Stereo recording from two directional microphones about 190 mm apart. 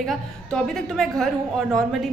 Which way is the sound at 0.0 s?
5° left (ahead or behind).